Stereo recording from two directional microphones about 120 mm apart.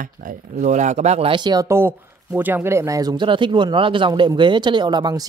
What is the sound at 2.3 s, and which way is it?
Speech, 15° right (ahead or behind).